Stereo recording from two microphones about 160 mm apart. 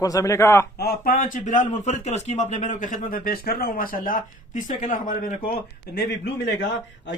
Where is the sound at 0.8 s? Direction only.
70° left (ahead or behind).